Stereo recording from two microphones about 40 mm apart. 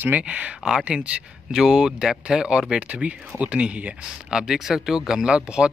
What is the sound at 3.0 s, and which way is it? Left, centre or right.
Speech, right.